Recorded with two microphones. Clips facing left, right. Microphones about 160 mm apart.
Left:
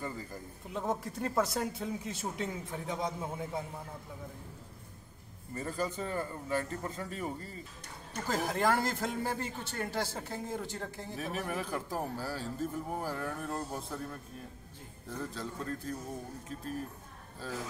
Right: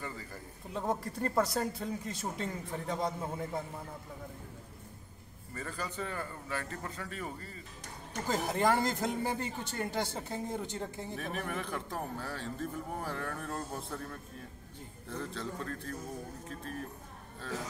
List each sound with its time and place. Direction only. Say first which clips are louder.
0.7 s speech: even; centre (ahead or behind)
5.5 s a man's voice: left 5 dB; 30° left (ahead or behind)
8.3 s a man's voice: right 1 dB; 20° right (ahead or behind)
11.1 s speech: left 2 dB; 5° left (ahead or behind)
15.0 s speech: even; 5° left (ahead or behind)